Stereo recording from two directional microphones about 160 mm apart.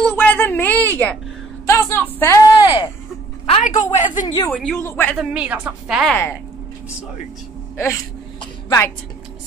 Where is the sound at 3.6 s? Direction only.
50° left (ahead or behind).